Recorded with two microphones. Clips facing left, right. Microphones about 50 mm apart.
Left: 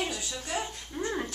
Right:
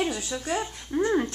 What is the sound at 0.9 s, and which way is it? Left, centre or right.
Dog, right.